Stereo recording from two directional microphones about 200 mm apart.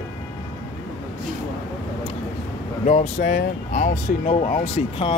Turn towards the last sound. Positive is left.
turn(degrees=30)  # may be behind; listen again after turning